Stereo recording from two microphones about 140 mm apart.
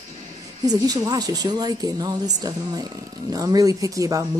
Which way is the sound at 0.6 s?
25° right (ahead or behind).